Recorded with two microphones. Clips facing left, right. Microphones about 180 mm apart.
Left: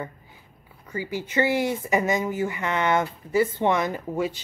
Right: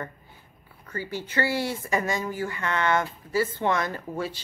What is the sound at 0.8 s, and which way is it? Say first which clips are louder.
Speech: left 3 dB; 15° left (ahead or behind).